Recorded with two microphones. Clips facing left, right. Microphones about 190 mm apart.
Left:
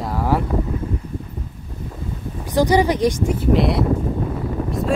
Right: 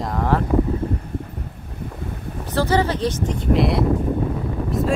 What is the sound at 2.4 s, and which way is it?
Speech, 15° left (ahead or behind).